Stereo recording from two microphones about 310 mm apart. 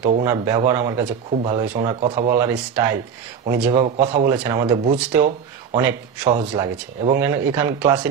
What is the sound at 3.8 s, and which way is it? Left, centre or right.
Speech, right.